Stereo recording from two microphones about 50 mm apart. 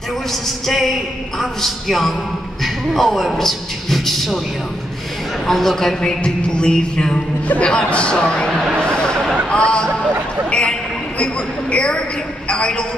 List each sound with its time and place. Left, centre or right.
0.3 s a man's voice: centre
5.5 s a man's voice: centre
5.9 s music: centre
7.4 s speech: left
7.7 s speech: centre
8.7 s a sound: centre
9.5 s speech: left
10.5 s a sound: centre
11.7 s music: centre
12.4 s speech: left